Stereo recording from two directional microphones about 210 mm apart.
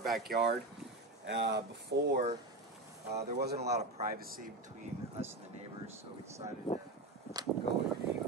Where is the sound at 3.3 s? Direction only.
50° right (ahead or behind).